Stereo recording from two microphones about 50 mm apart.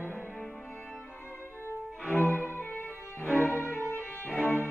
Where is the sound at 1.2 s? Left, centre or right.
Left.